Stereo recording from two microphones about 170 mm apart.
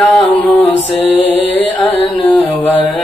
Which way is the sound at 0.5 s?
40° left (ahead or behind).